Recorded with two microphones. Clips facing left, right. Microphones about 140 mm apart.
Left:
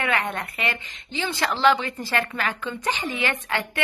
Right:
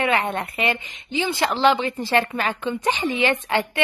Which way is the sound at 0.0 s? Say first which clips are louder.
Right 4 dB; 20° right (ahead or behind).